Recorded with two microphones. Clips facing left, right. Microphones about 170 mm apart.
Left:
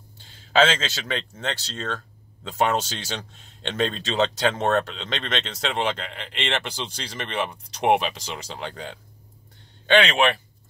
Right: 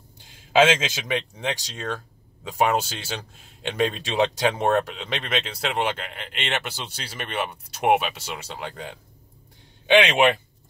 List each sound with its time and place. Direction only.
0.2 s speech: 10° right (ahead or behind)
9.8 s speech: 15° right (ahead or behind)